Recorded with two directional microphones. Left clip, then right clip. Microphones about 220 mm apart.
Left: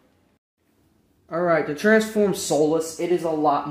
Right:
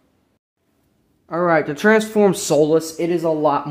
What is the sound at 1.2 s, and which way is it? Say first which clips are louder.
Speech: right 4 dB; 30° right (ahead or behind).